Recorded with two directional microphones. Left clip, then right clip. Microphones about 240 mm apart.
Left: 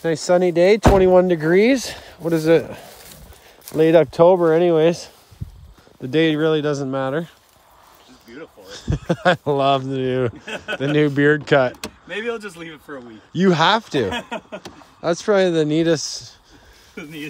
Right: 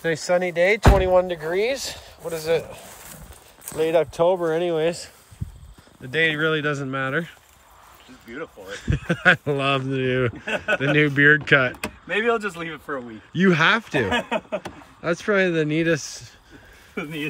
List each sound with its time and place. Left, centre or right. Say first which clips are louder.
0.0 s speech: left 4 dB; centre
0.6 s speech: left 4 dB; left
6.0 s speech: left 3 dB; left
8.6 s speech: left 4 dB; centre